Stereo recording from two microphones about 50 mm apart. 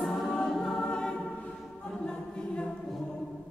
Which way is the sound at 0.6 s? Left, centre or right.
Centre.